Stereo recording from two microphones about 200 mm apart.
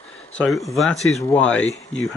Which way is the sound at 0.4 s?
Centre (ahead or behind).